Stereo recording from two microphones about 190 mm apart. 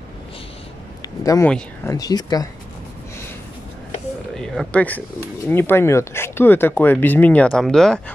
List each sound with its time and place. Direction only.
1.0 s a sound: 15° left (ahead or behind)
1.9 s speech: 20° left (ahead or behind)
4.4 s speech: 5° left (ahead or behind)